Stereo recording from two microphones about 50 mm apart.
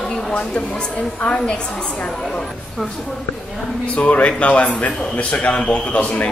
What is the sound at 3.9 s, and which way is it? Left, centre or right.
A man's voice, left.